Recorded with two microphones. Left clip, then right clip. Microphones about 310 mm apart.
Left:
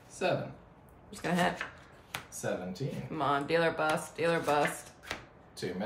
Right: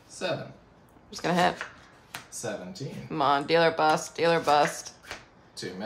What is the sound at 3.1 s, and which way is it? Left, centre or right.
Speech, centre.